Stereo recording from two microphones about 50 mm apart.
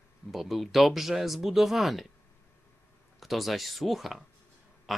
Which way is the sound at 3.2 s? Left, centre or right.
Centre.